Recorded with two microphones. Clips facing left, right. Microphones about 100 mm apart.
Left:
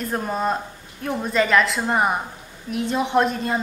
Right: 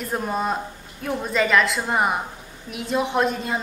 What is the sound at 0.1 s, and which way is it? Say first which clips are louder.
A man's voice: even; centre (ahead or behind).